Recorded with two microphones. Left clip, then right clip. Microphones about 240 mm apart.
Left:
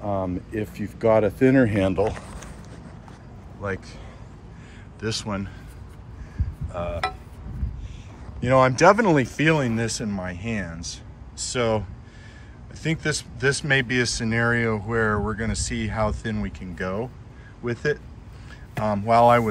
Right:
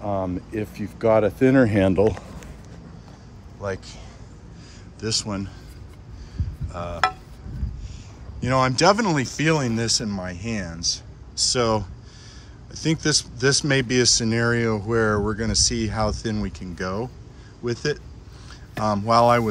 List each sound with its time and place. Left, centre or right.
0.0 s speech: centre
1.7 s speech: right
3.6 s speech: centre
5.0 s speech: centre
6.7 s a sound: centre
8.4 s speech: centre